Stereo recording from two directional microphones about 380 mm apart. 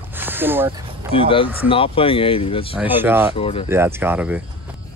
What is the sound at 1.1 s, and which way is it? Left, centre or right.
Speech, centre.